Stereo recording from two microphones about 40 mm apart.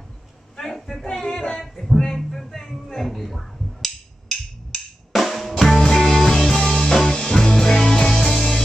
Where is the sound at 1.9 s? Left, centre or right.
Centre.